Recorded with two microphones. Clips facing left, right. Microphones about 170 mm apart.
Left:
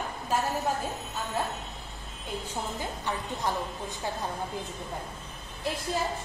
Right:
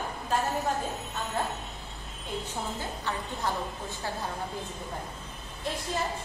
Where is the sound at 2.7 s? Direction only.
15° left (ahead or behind).